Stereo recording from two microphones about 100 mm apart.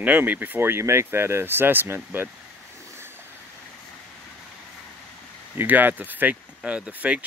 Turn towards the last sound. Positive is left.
turn(degrees=-15)  # may be behind; listen again after turning